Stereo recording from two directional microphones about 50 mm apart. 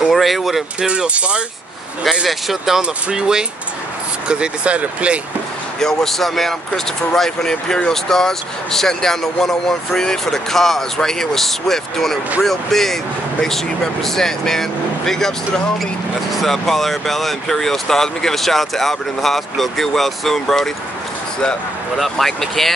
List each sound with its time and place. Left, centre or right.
0.1 s speech: centre
0.7 s speech: right
2.2 s speech: centre
2.8 s speech: centre
5.8 s speech: centre
22.1 s speech: centre